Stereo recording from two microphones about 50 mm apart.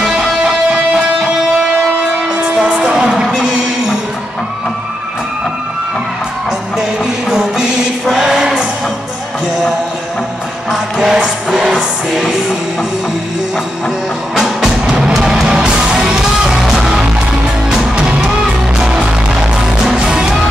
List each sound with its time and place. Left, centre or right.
0.0 s music: centre
6.8 s music: centre
10.7 s music: centre
14.3 s music: centre